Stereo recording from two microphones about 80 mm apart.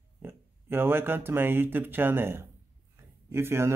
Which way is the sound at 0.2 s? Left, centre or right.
Right.